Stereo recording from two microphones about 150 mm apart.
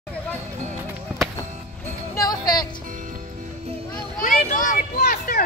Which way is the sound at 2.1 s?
25° left (ahead or behind).